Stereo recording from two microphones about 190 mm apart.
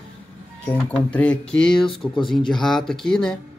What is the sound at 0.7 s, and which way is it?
Speech, 5° left (ahead or behind).